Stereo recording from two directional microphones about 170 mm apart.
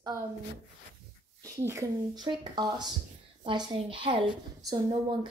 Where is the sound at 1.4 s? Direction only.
20° right (ahead or behind).